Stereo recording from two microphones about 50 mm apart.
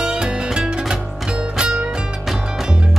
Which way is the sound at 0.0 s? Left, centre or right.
Centre.